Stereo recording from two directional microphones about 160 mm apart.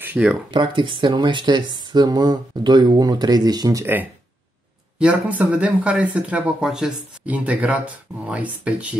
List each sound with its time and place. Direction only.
0.0 s speech: 10° right (ahead or behind)
0.5 s speech: 30° right (ahead or behind); by 8.8 s 10° right (ahead or behind)